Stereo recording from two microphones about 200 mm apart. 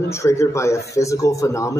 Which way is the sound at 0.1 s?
15° left (ahead or behind).